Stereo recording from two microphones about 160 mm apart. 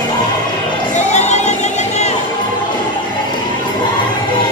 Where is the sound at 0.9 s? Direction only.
45° left (ahead or behind).